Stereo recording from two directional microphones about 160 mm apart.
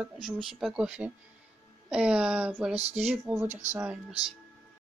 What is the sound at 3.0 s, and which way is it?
Speech, 15° right (ahead or behind).